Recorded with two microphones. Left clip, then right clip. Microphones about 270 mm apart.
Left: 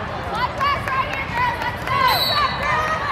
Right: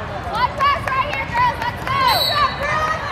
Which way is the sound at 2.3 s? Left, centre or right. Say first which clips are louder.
Right 1 dB; right.